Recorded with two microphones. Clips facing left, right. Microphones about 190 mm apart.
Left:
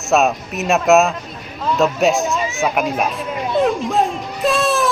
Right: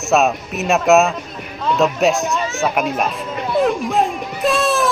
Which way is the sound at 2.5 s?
15° left (ahead or behind).